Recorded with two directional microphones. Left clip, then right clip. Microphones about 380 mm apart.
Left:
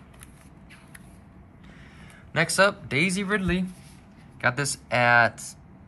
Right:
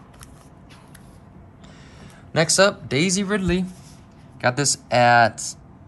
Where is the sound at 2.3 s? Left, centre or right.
Centre.